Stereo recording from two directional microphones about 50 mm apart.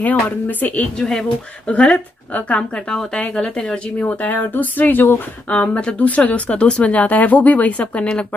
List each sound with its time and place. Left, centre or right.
0.0 s speech: left
0.9 s speech: centre
1.7 s speech: left
4.0 s speech: left
5.5 s speech: left